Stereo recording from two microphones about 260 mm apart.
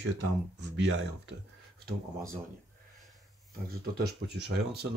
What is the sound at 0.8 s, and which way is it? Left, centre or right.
Speech, right.